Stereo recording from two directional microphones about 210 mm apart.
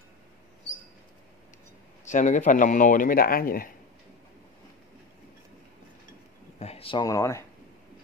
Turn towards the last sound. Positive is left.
turn(degrees=15)  # may be behind; listen again after turning